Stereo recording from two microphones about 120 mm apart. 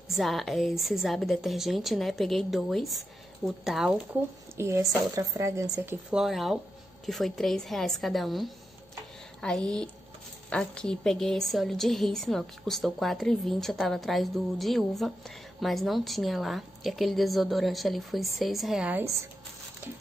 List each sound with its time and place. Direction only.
0.1 s a woman's voice: centre (ahead or behind)
4.6 s a woman's voice: 25° right (ahead or behind)
6.0 s a woman's voice: 5° right (ahead or behind)